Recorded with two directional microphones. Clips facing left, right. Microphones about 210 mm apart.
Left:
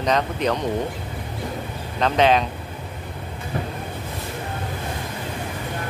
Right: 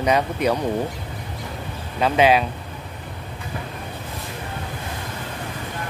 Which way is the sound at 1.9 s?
10° right (ahead or behind).